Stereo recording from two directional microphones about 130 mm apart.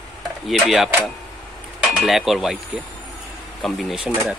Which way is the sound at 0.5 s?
Centre (ahead or behind).